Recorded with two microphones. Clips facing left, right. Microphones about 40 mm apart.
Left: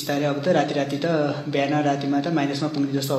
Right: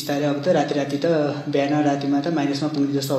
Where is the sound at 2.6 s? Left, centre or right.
Left.